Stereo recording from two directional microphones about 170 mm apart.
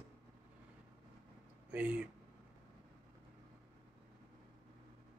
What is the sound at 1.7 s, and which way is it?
Speech, 10° right (ahead or behind).